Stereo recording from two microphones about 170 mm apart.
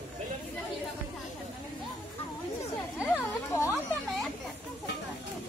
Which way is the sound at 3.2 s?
15° left (ahead or behind).